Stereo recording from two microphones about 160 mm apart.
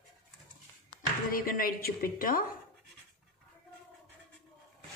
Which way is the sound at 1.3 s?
65° left (ahead or behind).